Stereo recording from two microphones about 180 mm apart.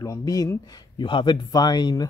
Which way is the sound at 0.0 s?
20° left (ahead or behind).